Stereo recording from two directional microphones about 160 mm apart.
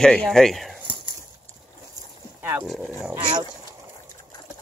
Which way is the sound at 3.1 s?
30° right (ahead or behind).